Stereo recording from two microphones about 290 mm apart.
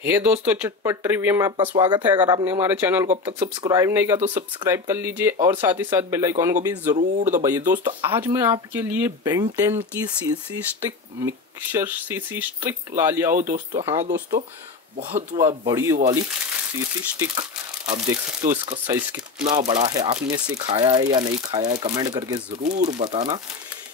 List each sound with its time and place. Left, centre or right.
0.0 s speech: centre
7.0 s speech: right
7.4 s speech: centre
22.6 s speech: right